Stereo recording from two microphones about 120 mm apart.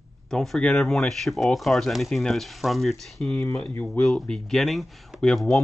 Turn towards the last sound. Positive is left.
turn(degrees=0)  # may be behind; listen again after turning